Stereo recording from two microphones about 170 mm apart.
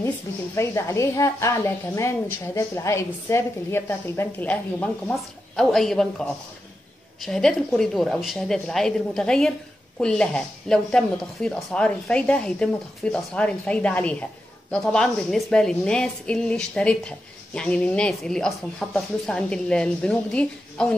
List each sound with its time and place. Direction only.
0.6 s a woman's voice: 15° left (ahead or behind)